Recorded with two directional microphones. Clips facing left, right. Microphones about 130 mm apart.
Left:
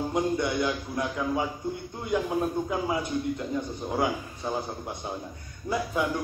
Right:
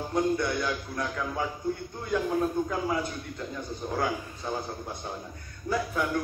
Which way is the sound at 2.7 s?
20° left (ahead or behind).